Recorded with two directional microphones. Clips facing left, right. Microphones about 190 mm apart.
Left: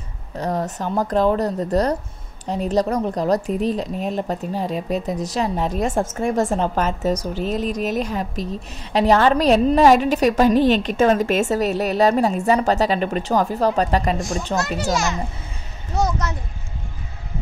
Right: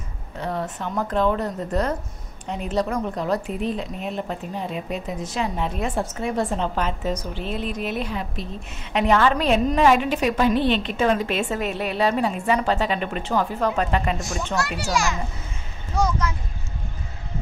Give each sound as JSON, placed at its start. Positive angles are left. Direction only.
{"t": 0.4, "sound": "a woman's voice", "side_deg": 40}
{"t": 14.9, "sound": "a child's voice", "side_deg": 20}